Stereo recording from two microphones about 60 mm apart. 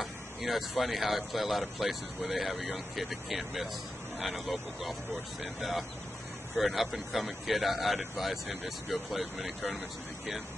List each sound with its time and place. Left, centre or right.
0.0 s speech: centre